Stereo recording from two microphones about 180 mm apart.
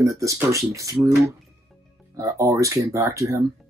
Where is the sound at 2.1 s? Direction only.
15° right (ahead or behind).